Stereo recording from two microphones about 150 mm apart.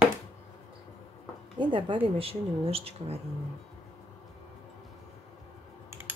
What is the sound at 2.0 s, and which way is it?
Speech, 40° right (ahead or behind).